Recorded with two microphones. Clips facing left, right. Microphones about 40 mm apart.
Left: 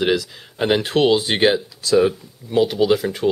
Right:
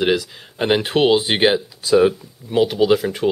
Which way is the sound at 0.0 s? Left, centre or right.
Centre.